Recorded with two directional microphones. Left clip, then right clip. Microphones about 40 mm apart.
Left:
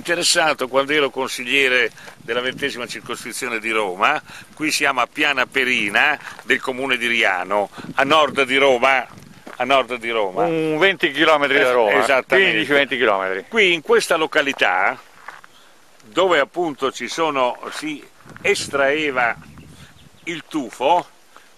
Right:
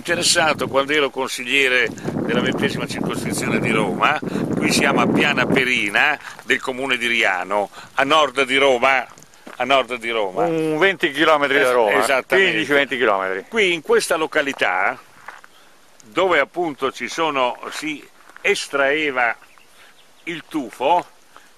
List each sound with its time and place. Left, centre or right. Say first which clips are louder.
0.0 s speech: even; centre
10.5 s speech: even; right
12.0 s speech: left 1 dB; left
12.5 s speech: left 1 dB; centre
13.5 s speech: left 2 dB; left
16.3 s speech: right 1 dB; left